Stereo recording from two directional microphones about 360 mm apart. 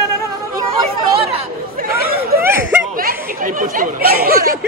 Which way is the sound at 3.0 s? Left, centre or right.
Right.